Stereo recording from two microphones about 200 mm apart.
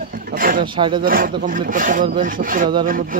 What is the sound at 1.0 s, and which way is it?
Speech, 45° right (ahead or behind).